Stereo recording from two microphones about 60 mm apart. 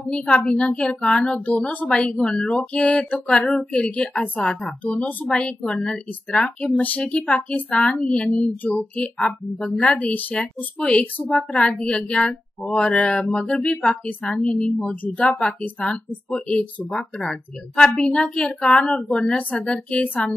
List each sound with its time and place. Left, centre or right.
0.1 s a woman's voice: centre